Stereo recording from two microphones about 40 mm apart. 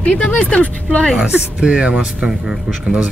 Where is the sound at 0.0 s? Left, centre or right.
Left.